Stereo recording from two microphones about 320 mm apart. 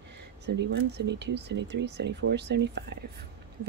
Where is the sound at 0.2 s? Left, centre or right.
Right.